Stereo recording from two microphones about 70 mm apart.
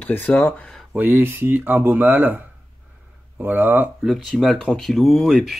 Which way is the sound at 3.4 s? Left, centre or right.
Right.